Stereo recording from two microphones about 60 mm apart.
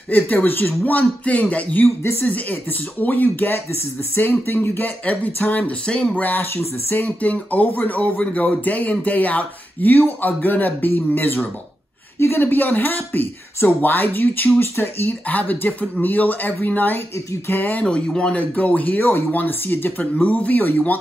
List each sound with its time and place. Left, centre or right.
0.1 s speech: left
6.5 s speech: left
7.0 s speech: left
17.8 s speech: centre; by 19.9 s left
20.2 s speech: left